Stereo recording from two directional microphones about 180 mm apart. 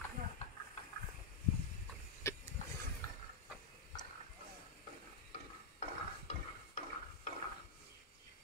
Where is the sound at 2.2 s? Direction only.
15° left (ahead or behind).